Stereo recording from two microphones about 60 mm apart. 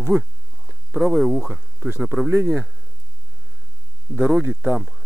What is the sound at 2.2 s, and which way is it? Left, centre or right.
Speech, right.